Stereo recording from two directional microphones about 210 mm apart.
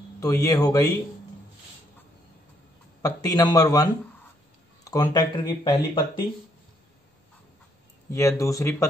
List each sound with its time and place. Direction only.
0.2 s speech: 15° left (ahead or behind)
3.0 s speech: 15° left (ahead or behind)
8.1 s speech: 15° left (ahead or behind)